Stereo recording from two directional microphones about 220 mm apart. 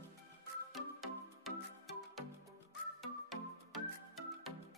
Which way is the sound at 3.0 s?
Centre (ahead or behind).